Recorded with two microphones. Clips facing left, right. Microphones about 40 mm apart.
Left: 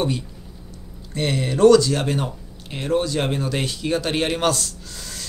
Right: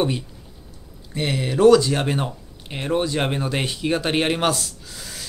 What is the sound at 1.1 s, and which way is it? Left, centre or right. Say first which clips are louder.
Speech: even; centre.